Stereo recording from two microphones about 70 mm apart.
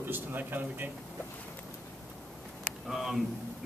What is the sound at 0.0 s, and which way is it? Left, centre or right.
Speech, right.